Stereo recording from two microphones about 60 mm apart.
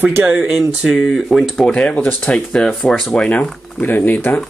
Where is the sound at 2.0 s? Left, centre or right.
Left.